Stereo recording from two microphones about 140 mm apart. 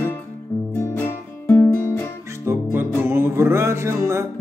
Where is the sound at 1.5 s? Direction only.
20° left (ahead or behind).